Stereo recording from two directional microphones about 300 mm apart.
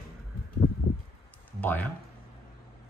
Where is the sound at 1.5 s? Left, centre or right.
Centre.